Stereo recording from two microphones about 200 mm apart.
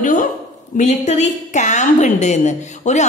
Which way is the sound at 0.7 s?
35° left (ahead or behind).